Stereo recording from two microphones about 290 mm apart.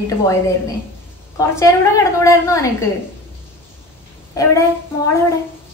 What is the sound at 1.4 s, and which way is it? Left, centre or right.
A woman's voice, centre.